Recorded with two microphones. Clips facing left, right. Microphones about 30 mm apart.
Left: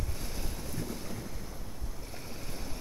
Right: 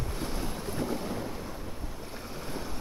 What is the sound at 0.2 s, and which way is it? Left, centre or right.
Boat, right.